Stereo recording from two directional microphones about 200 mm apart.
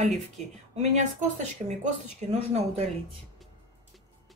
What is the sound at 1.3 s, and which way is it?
Speech, 35° right (ahead or behind).